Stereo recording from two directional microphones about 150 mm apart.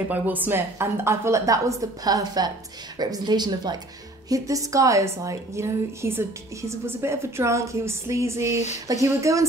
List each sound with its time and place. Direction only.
0.1 s a woman's voice: 10° right (ahead or behind)